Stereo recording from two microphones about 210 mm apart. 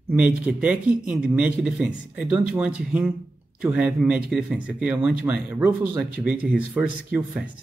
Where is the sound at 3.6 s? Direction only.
5° right (ahead or behind).